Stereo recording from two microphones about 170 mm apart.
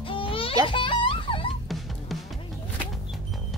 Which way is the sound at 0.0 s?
30° left (ahead or behind).